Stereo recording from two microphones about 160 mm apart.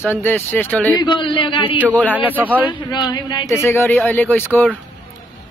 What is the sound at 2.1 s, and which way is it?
Speech, 10° right (ahead or behind).